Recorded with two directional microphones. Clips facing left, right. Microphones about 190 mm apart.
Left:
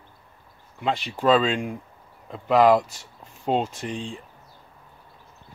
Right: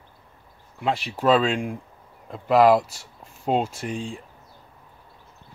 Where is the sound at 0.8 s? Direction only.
5° right (ahead or behind).